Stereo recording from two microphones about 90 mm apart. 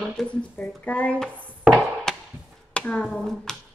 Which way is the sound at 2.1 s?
5° left (ahead or behind).